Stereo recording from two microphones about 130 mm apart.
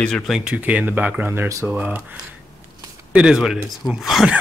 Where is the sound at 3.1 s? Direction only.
5° right (ahead or behind).